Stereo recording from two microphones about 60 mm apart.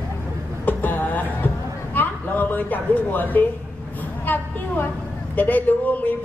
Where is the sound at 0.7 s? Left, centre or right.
Left.